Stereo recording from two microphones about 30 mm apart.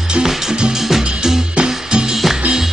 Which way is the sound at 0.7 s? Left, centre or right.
Centre.